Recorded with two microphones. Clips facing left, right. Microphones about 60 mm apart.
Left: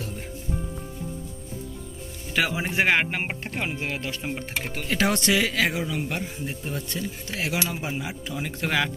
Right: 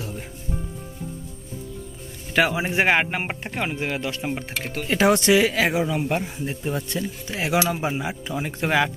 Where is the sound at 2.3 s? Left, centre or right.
Centre; by 6.2 s right.